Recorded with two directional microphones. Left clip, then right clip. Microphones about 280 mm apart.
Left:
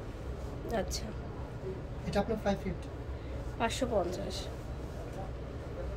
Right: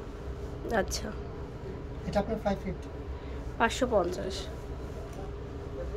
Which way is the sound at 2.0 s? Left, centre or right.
Centre.